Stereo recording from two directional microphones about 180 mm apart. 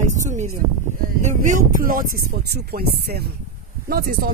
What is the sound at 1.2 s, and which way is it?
Speech, 45° right (ahead or behind).